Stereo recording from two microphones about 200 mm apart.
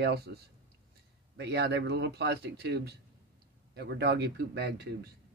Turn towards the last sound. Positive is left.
turn(degrees=-55)  # may be behind; listen again after turning